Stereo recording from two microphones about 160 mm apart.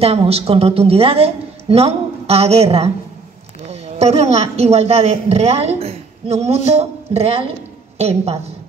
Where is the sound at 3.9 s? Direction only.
40° right (ahead or behind).